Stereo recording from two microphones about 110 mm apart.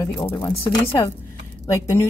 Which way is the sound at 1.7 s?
25° left (ahead or behind).